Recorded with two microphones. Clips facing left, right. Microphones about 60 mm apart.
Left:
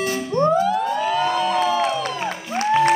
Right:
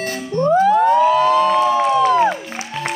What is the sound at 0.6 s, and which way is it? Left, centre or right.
Music, right.